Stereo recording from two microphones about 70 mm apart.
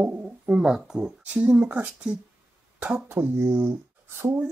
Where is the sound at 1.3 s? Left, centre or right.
Right.